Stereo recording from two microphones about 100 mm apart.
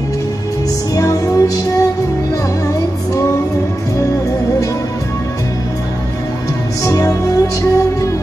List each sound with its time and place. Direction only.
0.9 s music: 35° left (ahead or behind)
6.8 s music: 35° left (ahead or behind)